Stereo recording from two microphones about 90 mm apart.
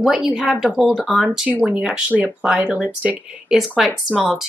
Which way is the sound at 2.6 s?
15° right (ahead or behind).